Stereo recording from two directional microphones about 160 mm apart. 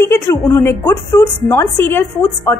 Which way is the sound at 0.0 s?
15° left (ahead or behind).